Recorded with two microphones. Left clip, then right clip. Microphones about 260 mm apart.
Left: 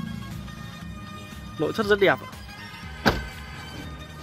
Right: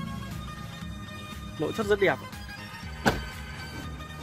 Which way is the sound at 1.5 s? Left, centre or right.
Centre.